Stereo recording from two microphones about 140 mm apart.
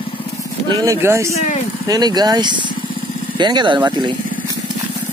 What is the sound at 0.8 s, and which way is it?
Speech, 20° right (ahead or behind).